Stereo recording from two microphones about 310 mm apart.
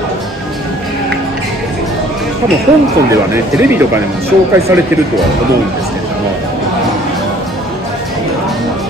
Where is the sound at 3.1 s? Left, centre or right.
Centre.